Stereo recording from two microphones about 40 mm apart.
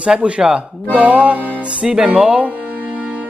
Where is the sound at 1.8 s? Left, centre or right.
Right.